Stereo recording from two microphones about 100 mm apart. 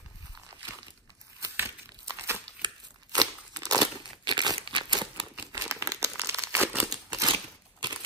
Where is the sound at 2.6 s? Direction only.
40° right (ahead or behind).